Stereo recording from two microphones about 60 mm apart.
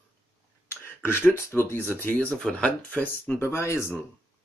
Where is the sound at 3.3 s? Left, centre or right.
Left.